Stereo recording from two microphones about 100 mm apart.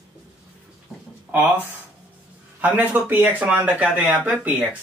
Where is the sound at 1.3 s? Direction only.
15° right (ahead or behind).